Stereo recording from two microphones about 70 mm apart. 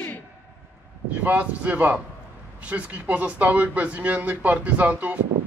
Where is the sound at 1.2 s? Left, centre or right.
Right.